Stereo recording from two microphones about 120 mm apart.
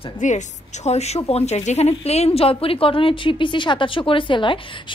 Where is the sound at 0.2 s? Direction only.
90° left.